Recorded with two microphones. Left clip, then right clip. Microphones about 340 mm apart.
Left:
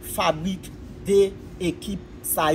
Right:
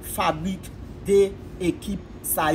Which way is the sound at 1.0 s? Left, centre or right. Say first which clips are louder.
Even; centre.